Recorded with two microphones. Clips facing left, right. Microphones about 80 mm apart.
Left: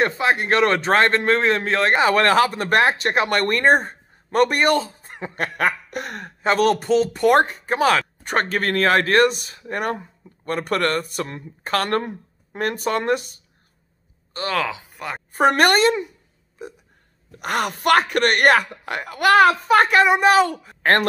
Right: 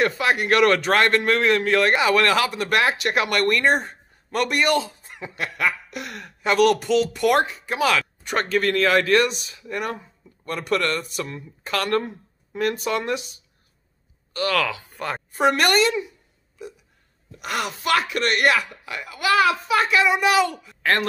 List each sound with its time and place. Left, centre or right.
0.0 s a man's voice: left
14.3 s speech: left
14.9 s a sound: centre
15.3 s a man's voice: left